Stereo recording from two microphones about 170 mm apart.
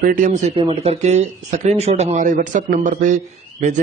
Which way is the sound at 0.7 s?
35° right (ahead or behind).